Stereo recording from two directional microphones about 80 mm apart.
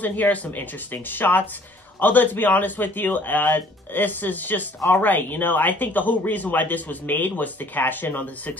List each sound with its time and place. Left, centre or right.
0.0 s speech: left